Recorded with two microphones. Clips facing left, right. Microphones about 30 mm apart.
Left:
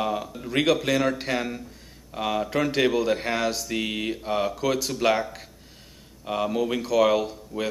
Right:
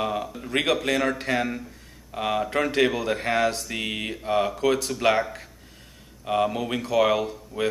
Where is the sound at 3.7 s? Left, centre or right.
Centre.